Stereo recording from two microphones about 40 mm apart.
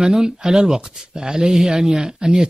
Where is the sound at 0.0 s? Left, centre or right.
Centre.